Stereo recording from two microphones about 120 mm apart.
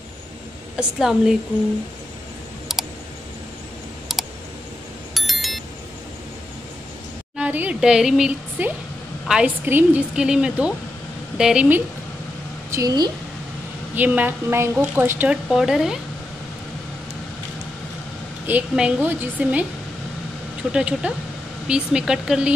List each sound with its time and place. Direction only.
0.7 s speech: 5° right (ahead or behind)
2.7 s a sound: 5° right (ahead or behind)
5.1 s a sound: centre (ahead or behind)
7.3 s a sound: 10° right (ahead or behind)
9.7 s a woman's voice: 15° right (ahead or behind)
10.1 s a woman's voice: 5° right (ahead or behind)
12.7 s a woman's voice: 35° right (ahead or behind)
13.9 s a woman's voice: 15° right (ahead or behind)
15.5 s speech: 5° right (ahead or behind)
18.5 s a woman's voice: 10° right (ahead or behind)
20.7 s a woman's voice: 10° right (ahead or behind)